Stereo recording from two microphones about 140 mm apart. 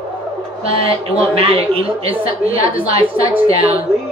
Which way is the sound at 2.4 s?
90° left.